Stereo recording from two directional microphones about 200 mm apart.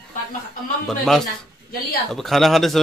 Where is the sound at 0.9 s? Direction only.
Centre (ahead or behind).